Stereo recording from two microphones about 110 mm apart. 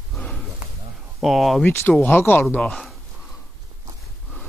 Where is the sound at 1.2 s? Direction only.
Centre (ahead or behind).